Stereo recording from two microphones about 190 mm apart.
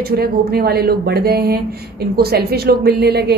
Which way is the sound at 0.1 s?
55° right (ahead or behind).